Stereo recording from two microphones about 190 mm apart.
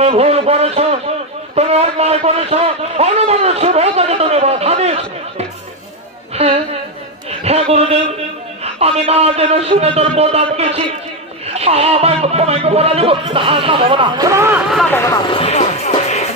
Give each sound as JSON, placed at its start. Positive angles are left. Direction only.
{"t": 0.0, "sound": "a man's voice", "side_deg": -30}
{"t": 6.3, "sound": "a woman's voice", "side_deg": -35}
{"t": 14.7, "sound": "speech", "side_deg": 0}
{"t": 15.2, "sound": "music", "side_deg": 30}